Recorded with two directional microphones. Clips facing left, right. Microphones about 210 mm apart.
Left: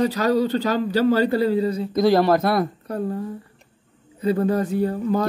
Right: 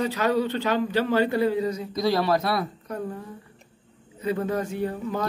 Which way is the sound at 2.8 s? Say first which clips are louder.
Left 6 dB; 35° left (ahead or behind).